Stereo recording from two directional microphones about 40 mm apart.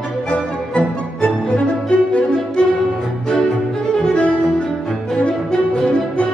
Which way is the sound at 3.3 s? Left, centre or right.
Centre.